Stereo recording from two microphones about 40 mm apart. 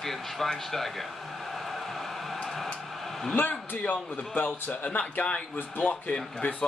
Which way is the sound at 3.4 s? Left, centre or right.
Left.